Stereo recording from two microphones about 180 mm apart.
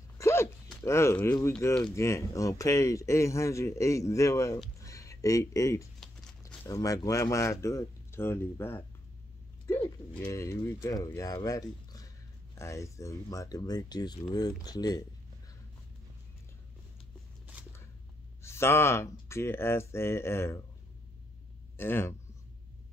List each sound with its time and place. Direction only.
0.2 s a sound: 15° left (ahead or behind)
0.7 s speech: 15° left (ahead or behind)
4.7 s music: 15° left (ahead or behind)
6.4 s speech: 15° left (ahead or behind)
18.4 s speech: 15° left (ahead or behind)
21.7 s speech: 10° left (ahead or behind)